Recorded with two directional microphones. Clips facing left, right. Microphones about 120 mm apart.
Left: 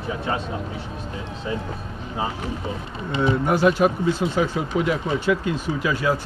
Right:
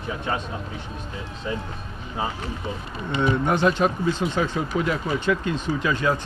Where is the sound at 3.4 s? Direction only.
10° left (ahead or behind).